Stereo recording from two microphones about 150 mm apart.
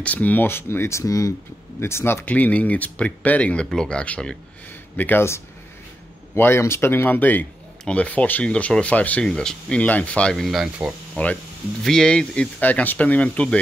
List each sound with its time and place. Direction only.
0.0 s speech: 10° left (ahead or behind)